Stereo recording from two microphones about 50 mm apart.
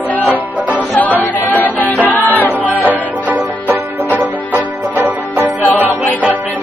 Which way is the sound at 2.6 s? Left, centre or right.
Right.